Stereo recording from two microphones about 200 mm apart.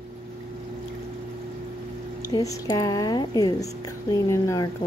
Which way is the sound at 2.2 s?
20° left (ahead or behind).